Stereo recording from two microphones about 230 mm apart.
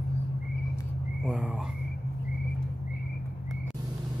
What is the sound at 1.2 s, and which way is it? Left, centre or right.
Speech, centre.